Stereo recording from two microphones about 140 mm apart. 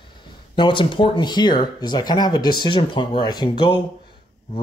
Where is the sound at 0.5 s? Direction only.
35° left (ahead or behind).